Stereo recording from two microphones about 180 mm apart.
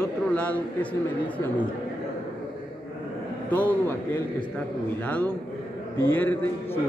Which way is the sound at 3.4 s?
10° left (ahead or behind).